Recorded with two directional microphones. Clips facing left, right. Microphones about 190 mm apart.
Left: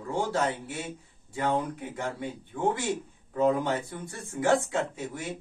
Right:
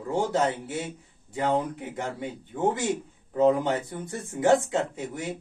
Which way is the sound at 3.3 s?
20° right (ahead or behind).